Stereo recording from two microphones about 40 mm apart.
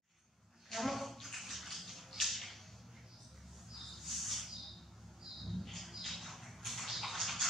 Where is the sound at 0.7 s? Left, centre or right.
Centre.